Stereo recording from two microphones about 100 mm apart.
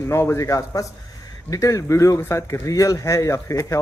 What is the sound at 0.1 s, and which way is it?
Speech, 25° left (ahead or behind).